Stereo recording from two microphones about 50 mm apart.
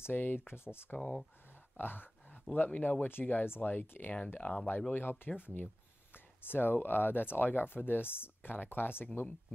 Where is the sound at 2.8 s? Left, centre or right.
Left.